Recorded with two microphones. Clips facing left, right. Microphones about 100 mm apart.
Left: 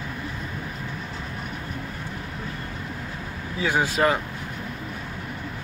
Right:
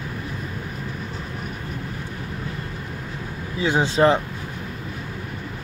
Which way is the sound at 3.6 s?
25° right (ahead or behind).